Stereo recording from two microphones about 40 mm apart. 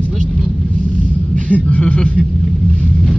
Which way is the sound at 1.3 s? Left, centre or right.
Left.